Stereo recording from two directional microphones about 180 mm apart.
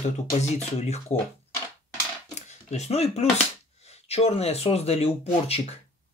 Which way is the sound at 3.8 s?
35° left (ahead or behind).